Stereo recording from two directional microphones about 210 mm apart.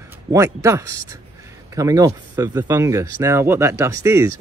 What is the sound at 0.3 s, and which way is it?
Speech, 15° right (ahead or behind).